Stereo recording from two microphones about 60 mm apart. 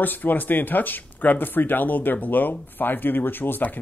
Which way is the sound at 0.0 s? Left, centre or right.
Left.